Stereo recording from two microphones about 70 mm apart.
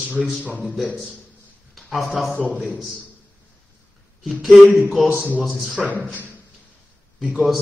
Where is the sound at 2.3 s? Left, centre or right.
Right.